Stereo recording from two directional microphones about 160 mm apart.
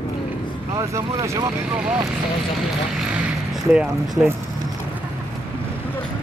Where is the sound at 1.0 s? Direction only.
25° right (ahead or behind).